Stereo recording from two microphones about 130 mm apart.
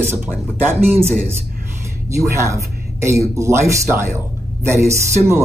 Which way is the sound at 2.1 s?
20° right (ahead or behind).